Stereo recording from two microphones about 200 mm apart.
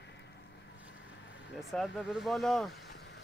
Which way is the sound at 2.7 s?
55° left (ahead or behind).